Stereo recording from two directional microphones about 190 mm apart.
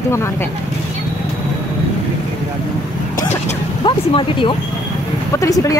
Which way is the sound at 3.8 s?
25° left (ahead or behind).